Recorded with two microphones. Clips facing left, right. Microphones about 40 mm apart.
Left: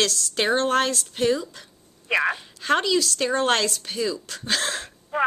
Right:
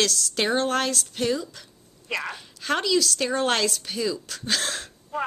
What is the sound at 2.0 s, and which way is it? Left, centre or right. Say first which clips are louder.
Wail: left 8 dB; left.